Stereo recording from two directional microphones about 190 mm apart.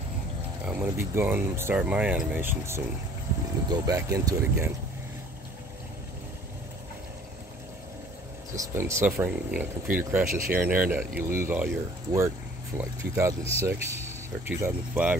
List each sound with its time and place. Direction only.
0.7 s speech: 10° right (ahead or behind)
8.5 s speech: 15° right (ahead or behind)
10.2 s speech: 45° right (ahead or behind)
10.5 s speech: 10° right (ahead or behind)